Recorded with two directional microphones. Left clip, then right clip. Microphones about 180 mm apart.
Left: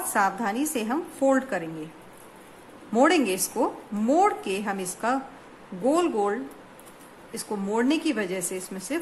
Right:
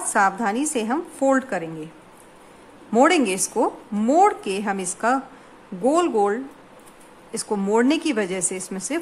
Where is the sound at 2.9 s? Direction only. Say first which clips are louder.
Right 4 dB; 20° right (ahead or behind).